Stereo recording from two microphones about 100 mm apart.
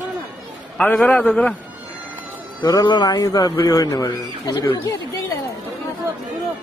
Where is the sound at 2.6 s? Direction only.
45° left (ahead or behind).